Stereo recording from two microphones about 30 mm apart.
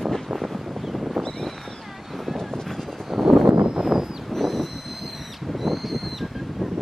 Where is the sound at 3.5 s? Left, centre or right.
Right.